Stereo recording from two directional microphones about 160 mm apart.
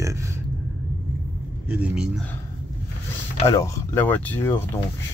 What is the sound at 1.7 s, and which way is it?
Speech, 5° right (ahead or behind).